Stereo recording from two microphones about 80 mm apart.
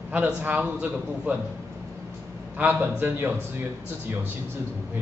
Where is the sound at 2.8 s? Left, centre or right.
Right.